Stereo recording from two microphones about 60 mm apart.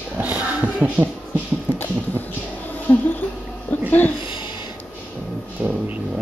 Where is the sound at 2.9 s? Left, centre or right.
Left.